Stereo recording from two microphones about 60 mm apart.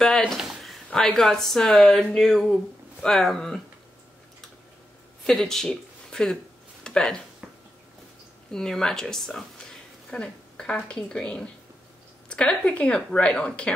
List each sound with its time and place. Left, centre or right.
0.0 s a woman's voice: centre
0.4 s a sound: centre
0.9 s a woman's voice: centre
5.2 s speech: centre
5.7 s a sound: centre
8.5 s a woman's voice: centre